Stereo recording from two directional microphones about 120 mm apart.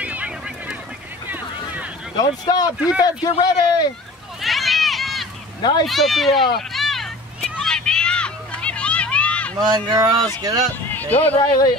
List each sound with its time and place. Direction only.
0.0 s a sound: 10° right (ahead or behind)
1.3 s boat: 15° right (ahead or behind)
2.1 s a man's voice: 35° left (ahead or behind)
4.4 s run: centre (ahead or behind)
5.6 s a man's voice: 40° left (ahead or behind)
5.9 s a sound: centre (ahead or behind)
9.6 s speech: 35° right (ahead or behind)
10.9 s speech: 15° left (ahead or behind)